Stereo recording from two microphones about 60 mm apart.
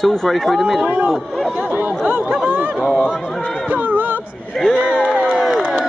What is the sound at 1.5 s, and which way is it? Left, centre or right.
Chatter, right.